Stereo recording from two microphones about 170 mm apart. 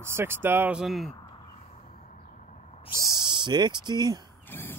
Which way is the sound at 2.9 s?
20° right (ahead or behind).